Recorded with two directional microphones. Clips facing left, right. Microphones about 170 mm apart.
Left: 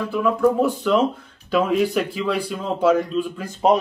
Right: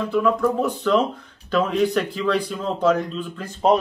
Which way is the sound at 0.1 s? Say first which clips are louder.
Left 2 dB; 5° left (ahead or behind).